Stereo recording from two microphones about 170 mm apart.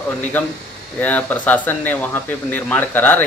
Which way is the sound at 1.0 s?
10° left (ahead or behind).